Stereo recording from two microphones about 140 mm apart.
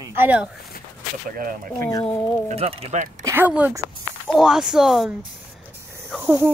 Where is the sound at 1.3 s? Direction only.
80° right.